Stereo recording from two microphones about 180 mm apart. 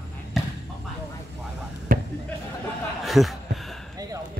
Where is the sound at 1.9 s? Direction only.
55° right (ahead or behind).